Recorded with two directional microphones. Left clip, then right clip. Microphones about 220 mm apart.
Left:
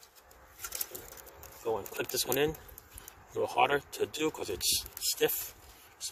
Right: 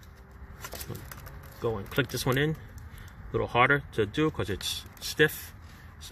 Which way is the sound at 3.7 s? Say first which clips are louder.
Right 5 dB; 30° left (ahead or behind).